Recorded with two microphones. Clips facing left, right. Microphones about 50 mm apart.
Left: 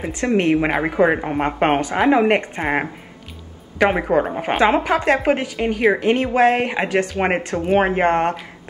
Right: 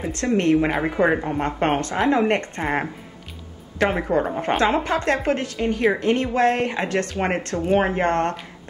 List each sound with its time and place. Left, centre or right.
0.0 s a woman's voice: centre
4.0 s a woman's voice: centre